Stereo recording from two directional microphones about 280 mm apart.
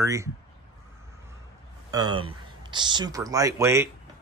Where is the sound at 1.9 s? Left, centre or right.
Centre.